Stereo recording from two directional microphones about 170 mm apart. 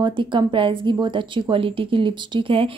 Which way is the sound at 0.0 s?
30° right (ahead or behind).